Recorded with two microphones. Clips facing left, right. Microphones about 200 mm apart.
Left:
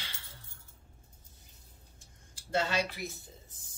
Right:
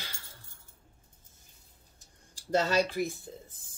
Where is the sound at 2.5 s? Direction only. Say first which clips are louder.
Right 5 dB; 40° right (ahead or behind).